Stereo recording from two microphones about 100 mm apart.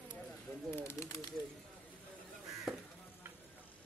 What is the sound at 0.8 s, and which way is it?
Bird, 30° left (ahead or behind).